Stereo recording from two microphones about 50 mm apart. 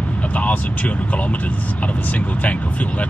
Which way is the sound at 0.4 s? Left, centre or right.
Left.